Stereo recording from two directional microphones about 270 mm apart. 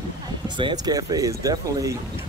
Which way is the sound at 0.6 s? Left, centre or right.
Centre.